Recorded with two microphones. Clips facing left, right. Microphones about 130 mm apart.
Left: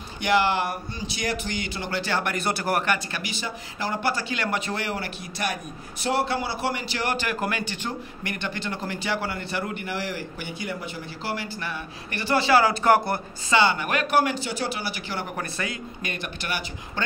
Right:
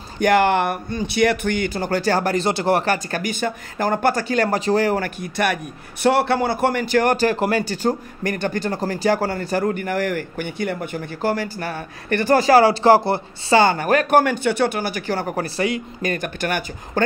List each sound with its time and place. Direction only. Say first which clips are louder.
0.2 s speech: right 6 dB; 55° right (ahead or behind)
2.3 s speech: right 7 dB; 25° right (ahead or behind); by 7.2 s 50° right (ahead or behind)
7.2 s speech: right 8 dB; 35° right (ahead or behind)
13.6 s speech: right 6 dB; 45° right (ahead or behind)
14.2 s speech: right 8 dB; 55° right (ahead or behind); by 15.8 s 30° right (ahead or behind)
16.0 s speech: right 10 dB; 45° right (ahead or behind)